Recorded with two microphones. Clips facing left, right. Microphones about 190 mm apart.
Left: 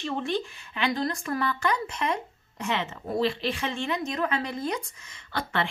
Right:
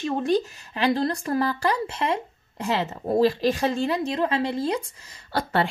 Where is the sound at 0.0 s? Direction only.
40° right (ahead or behind).